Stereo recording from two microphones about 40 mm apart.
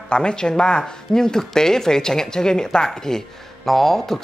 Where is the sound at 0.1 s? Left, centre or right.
Left.